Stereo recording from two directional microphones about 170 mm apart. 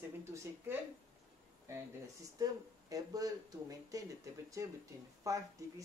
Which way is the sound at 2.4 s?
20° right (ahead or behind).